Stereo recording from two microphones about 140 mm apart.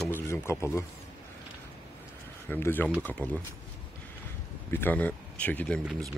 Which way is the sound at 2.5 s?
15° left (ahead or behind).